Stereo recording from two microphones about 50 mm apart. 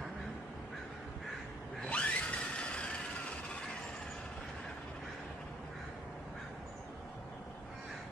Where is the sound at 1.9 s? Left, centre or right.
Left.